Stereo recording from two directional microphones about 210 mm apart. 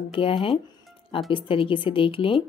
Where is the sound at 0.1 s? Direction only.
25° left (ahead or behind).